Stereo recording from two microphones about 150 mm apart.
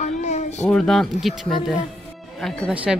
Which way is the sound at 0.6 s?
5° left (ahead or behind).